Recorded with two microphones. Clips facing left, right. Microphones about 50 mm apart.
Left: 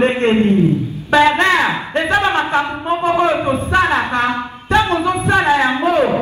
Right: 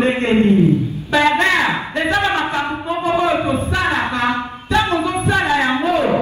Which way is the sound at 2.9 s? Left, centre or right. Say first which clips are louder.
Left 2 dB; left.